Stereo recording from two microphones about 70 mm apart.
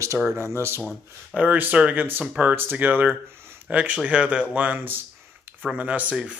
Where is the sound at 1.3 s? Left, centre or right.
Right.